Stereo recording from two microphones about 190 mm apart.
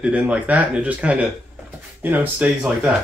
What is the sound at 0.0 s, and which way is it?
Speech, 5° right (ahead or behind).